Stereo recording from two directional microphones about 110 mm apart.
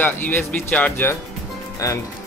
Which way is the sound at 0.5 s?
5° left (ahead or behind).